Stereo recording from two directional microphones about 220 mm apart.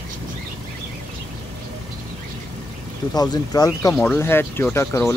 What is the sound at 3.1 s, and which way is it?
Speech, 15° left (ahead or behind).